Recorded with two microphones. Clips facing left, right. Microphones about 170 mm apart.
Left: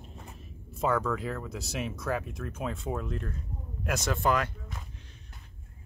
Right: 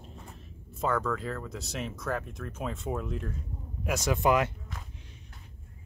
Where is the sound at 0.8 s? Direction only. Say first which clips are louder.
Left 1 dB; 5° left (ahead or behind); by 4.5 s 20° right (ahead or behind).